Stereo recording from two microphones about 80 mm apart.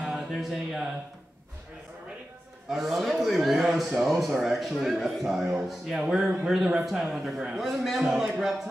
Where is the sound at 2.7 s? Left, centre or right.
Centre.